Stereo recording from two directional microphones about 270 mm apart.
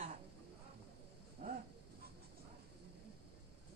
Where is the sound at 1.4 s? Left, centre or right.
Right.